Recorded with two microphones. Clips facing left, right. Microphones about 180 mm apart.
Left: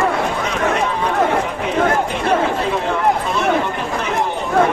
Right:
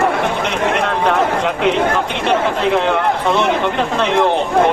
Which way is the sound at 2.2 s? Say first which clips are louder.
Right 3 dB; 80° right.